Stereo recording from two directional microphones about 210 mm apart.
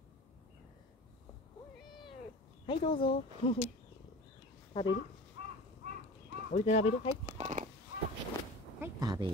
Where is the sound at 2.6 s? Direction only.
25° left (ahead or behind).